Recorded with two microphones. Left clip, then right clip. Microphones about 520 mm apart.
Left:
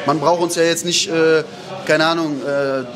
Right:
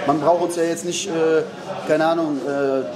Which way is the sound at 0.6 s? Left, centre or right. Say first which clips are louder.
Left 6 dB; left.